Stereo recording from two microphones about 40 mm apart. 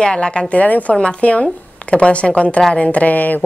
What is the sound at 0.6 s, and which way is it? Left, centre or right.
Speech, left.